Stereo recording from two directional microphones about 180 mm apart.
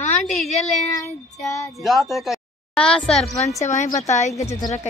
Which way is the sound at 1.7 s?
Centre (ahead or behind).